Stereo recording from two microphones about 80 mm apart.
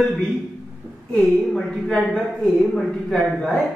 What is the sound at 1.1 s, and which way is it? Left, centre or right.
A woman's voice, centre.